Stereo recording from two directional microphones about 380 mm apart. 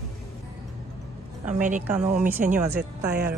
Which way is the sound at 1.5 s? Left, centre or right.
Centre.